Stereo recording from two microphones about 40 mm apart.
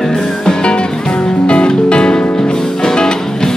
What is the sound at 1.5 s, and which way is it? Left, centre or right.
Music, left.